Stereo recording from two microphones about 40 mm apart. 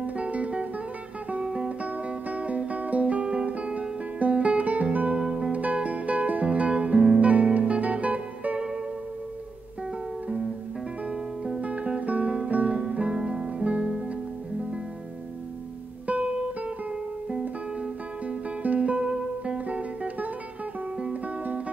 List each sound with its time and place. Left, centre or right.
0.0 s music: right
1.4 s music: right
1.8 s music: right
4.2 s guitar: right
5.3 s music: right
11.6 s guitar: right
16.1 s guitar: right
18.8 s music: right